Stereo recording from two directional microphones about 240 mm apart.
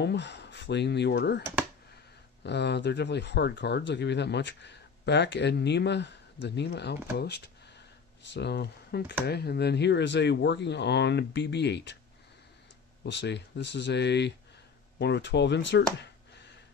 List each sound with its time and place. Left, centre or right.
0.0 s speech: left
1.4 s speech: centre
2.4 s speech: left
13.0 s speech: left